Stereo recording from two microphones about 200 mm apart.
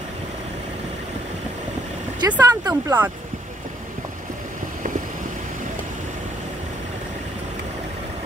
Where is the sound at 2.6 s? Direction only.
10° right (ahead or behind).